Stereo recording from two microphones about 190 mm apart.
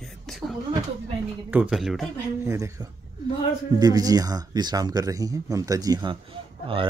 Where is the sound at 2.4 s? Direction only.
15° right (ahead or behind).